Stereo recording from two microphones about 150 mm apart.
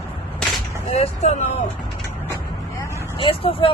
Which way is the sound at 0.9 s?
45° left (ahead or behind).